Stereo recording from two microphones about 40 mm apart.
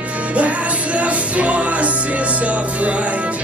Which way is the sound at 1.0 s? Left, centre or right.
Right.